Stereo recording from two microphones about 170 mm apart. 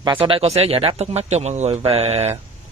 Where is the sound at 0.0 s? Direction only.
30° right (ahead or behind).